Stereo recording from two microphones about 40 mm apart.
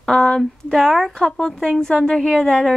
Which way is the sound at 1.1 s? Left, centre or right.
Centre.